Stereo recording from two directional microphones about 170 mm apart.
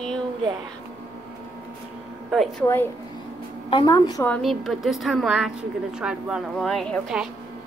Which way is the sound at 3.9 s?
20° left (ahead or behind).